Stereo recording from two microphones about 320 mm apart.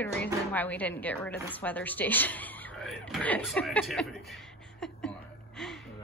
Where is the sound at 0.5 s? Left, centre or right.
Centre.